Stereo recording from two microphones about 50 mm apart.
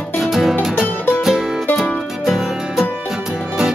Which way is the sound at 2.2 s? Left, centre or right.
Centre.